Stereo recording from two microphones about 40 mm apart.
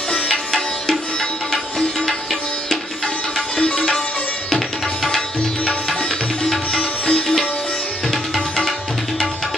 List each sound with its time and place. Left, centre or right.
0.1 s music: centre
3.3 s sitar: centre
4.5 s music: centre
6.5 s sitar: centre
8.1 s music: centre